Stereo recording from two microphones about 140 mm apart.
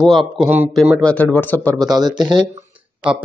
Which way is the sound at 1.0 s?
10° left (ahead or behind).